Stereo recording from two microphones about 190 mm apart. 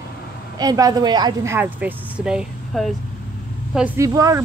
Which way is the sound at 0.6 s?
20° right (ahead or behind).